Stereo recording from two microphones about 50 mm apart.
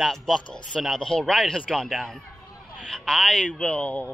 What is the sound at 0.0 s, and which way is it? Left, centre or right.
Speech, centre.